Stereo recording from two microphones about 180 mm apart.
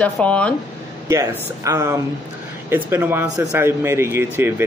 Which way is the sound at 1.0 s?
15° right (ahead or behind).